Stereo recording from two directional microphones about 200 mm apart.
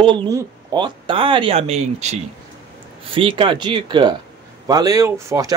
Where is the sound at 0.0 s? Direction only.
25° right (ahead or behind).